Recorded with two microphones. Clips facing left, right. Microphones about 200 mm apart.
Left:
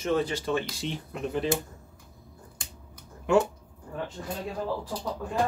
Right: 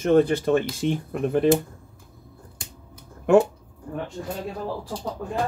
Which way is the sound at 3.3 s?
55° right (ahead or behind).